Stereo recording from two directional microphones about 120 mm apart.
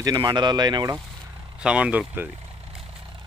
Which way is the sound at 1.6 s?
10° right (ahead or behind).